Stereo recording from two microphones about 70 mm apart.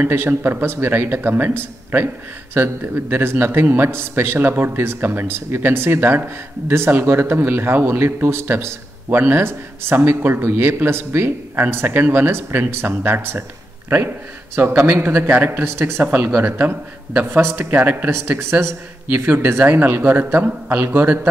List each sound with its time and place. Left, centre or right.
0.0 s speech: right